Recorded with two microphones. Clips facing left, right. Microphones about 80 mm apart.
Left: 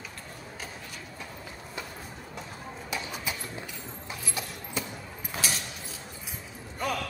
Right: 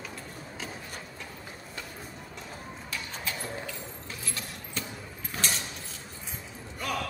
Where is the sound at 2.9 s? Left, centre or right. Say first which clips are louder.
Left 2 dB; centre.